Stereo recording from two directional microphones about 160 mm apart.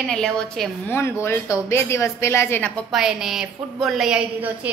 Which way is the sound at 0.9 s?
15° left (ahead or behind).